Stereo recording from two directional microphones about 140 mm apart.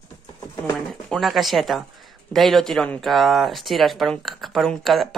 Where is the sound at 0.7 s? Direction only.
5° left (ahead or behind).